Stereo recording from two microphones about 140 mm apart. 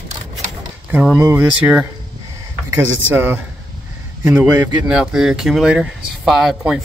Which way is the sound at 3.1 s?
15° right (ahead or behind).